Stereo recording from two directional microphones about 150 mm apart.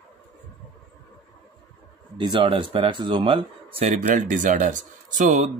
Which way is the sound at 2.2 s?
30° right (ahead or behind).